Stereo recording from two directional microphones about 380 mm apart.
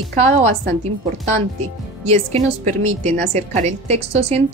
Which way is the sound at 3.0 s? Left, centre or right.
Centre.